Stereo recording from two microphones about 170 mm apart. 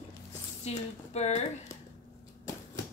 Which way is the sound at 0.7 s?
40° left (ahead or behind).